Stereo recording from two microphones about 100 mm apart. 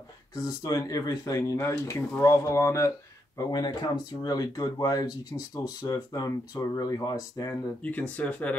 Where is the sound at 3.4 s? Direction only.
45° left (ahead or behind).